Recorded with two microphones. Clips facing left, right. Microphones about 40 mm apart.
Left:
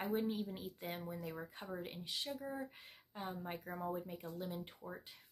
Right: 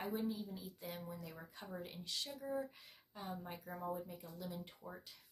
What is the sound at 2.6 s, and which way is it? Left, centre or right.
Speech, left.